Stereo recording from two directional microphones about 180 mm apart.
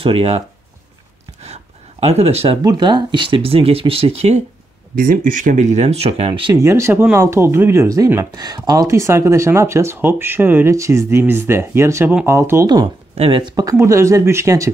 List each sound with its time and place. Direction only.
0.0 s speech: 35° right (ahead or behind)
1.4 s a sound: 35° right (ahead or behind)
2.6 s speech: 25° right (ahead or behind)
4.9 s speech: 50° right (ahead or behind); by 6.5 s 30° right (ahead or behind)
6.5 s speech: 15° right (ahead or behind)